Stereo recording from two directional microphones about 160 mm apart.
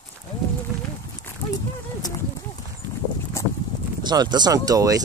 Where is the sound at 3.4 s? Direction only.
20° left (ahead or behind).